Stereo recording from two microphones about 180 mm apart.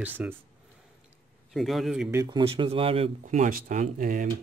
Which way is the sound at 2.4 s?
30° right (ahead or behind).